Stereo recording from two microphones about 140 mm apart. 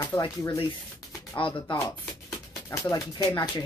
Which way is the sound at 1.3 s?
35° left (ahead or behind).